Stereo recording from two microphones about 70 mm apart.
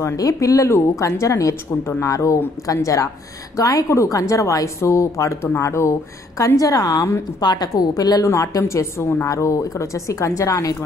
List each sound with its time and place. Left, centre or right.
0.0 s a woman's voice: left
2.0 s a woman's voice: left
7.3 s a woman's voice: left
8.3 s a woman's voice: left